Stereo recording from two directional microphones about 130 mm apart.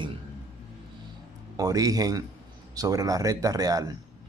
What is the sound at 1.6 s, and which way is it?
Speech, 30° right (ahead or behind).